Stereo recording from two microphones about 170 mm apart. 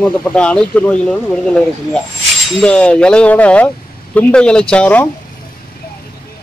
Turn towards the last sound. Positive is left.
turn(degrees=5)  # may be behind; listen again after turning